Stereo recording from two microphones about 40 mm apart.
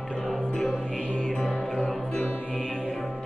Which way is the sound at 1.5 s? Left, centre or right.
Centre.